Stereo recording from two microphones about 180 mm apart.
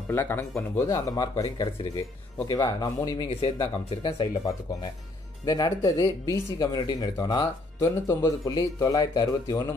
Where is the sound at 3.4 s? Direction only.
30° left (ahead or behind).